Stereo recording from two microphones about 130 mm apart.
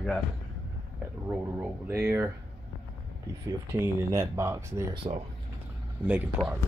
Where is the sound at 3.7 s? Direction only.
20° right (ahead or behind).